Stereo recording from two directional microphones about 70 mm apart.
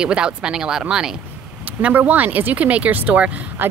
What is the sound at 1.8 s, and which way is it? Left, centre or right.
Speech, right.